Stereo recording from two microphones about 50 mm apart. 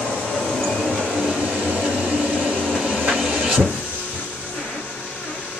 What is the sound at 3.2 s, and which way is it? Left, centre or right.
Vehicle, centre.